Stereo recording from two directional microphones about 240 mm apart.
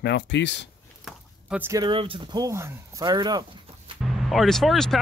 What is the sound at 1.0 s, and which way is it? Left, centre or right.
Speech, centre.